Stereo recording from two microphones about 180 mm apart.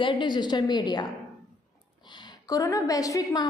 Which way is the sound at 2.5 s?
20° left (ahead or behind).